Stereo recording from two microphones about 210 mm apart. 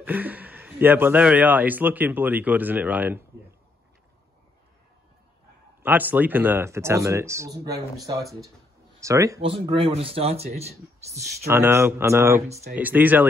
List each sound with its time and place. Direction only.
0.0 s speech: 10° right (ahead or behind)
5.8 s speech: 10° right (ahead or behind); by 10.7 s 30° right (ahead or behind)
11.1 s speech: 10° right (ahead or behind)